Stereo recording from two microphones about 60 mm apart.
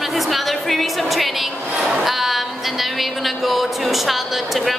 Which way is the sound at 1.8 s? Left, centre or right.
Centre.